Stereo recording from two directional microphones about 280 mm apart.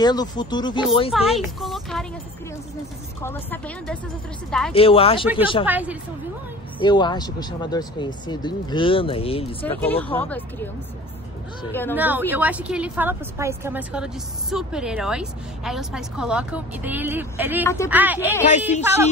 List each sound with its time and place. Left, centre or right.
0.0 s speech: centre
1.1 s a woman's voice: centre
3.2 s a woman's voice: centre
4.7 s speech: centre
5.7 s a woman's voice: centre
6.8 s speech: centre
9.6 s speech: centre
11.9 s a woman's voice: centre